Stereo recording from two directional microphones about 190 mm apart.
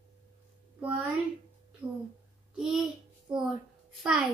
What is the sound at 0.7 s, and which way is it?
Speech, 10° right (ahead or behind).